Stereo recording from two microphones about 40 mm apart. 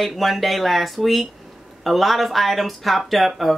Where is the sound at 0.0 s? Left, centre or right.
Centre.